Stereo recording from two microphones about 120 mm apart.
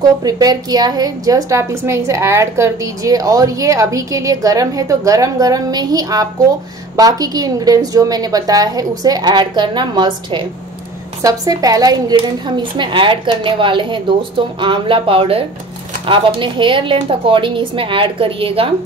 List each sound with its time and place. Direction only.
0.2 s a woman's voice: 30° right (ahead or behind); by 18.7 s 50° right (ahead or behind)